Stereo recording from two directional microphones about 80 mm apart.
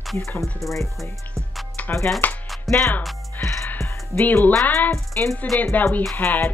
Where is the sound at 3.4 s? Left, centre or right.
Centre.